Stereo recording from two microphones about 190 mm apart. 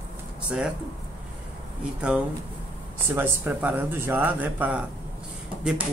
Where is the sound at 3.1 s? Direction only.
10° right (ahead or behind).